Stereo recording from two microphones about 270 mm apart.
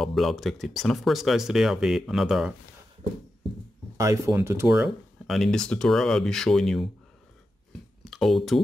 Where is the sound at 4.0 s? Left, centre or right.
Centre.